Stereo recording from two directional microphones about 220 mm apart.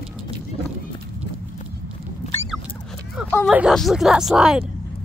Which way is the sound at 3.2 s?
5° left (ahead or behind).